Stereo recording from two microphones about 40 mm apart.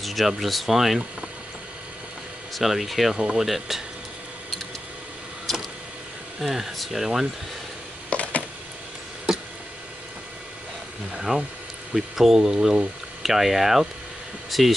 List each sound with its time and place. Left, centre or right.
0.0 s a sound: centre
0.4 s speech: centre
2.6 s speech: centre
3.2 s speech: centre
3.4 s speech: centre
5.5 s vehicle: centre
6.4 s speech: centre
8.1 s a sound: left
11.1 s speech: centre
11.9 s speech: centre